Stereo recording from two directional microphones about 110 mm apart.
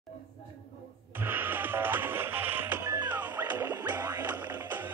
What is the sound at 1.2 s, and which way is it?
Music, 20° right (ahead or behind).